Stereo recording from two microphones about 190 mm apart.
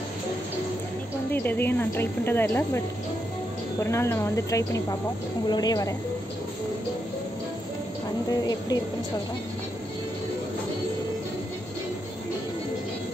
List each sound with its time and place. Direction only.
1.3 s a woman's voice: 10° left (ahead or behind)
3.8 s a woman's voice: 15° left (ahead or behind)
8.3 s a woman's voice: 20° left (ahead or behind)